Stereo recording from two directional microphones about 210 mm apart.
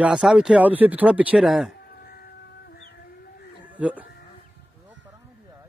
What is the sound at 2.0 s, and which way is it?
Chicken, 45° left (ahead or behind).